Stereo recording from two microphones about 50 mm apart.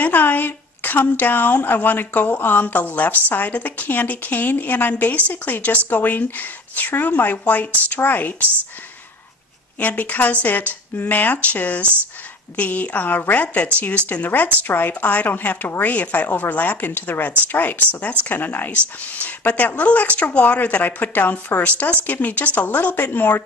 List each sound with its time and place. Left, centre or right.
0.0 s speech: left
9.8 s speech: left